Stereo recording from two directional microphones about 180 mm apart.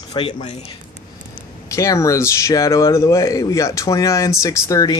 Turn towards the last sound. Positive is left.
turn(degrees=20)  # may be behind; listen again after turning